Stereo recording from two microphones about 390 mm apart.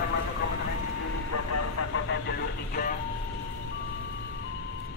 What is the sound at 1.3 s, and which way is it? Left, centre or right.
Vehicle, left.